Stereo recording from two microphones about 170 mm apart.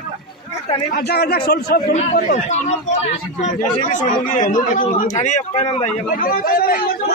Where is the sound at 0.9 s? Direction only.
65° left (ahead or behind).